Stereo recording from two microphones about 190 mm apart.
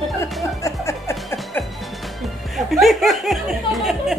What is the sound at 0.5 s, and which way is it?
Music, 15° left (ahead or behind).